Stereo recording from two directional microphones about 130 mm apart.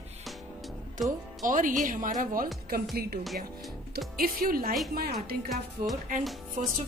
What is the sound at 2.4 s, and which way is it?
Speech, centre (ahead or behind).